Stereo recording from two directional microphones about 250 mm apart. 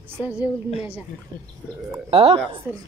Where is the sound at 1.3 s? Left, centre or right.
Centre.